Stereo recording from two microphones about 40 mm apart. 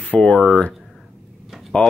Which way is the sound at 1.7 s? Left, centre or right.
Left.